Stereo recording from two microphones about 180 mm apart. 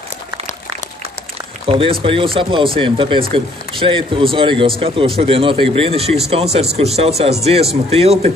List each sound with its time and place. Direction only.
1.7 s speech: 30° right (ahead or behind)